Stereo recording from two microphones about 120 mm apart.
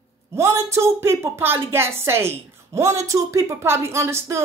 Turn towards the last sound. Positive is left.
turn(degrees=-25)  # may be behind; listen again after turning